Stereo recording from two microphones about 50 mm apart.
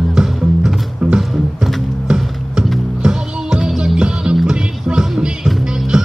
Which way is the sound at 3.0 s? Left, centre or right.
Centre.